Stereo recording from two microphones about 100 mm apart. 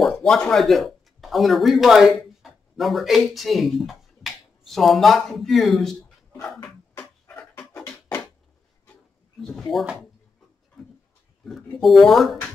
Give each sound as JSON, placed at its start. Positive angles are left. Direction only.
{"t": 0.0, "sound": "speech", "side_deg": 5}
{"t": 7.2, "sound": "dog", "side_deg": 15}
{"t": 10.8, "sound": "a sound", "side_deg": 5}
{"t": 11.8, "sound": "speech", "side_deg": 0}